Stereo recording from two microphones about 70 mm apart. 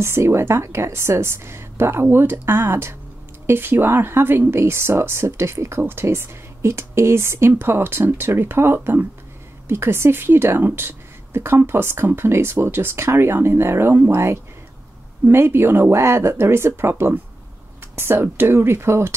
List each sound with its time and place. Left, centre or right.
0.0 s a woman's voice: right
15.2 s a woman's voice: right